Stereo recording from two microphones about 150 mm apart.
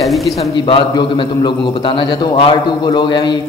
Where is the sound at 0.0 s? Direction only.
Centre (ahead or behind).